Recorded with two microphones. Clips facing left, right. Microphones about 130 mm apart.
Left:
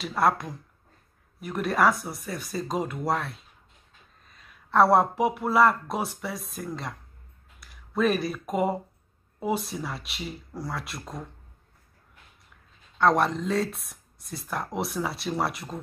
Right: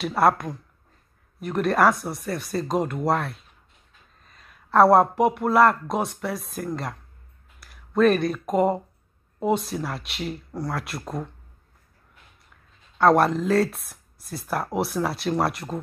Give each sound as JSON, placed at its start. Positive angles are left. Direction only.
{"t": 1.4, "sound": "speech", "side_deg": 0}
{"t": 10.9, "sound": "speech", "side_deg": -55}
{"t": 13.0, "sound": "speech", "side_deg": 0}